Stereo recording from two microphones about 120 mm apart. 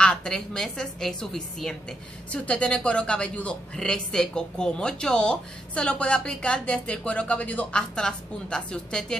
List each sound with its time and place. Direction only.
0.0 s a woman's voice: 5° left (ahead or behind)